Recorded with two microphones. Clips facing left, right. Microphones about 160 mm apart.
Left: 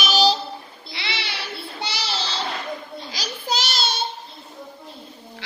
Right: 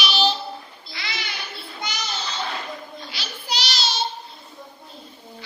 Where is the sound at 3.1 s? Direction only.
45° left (ahead or behind).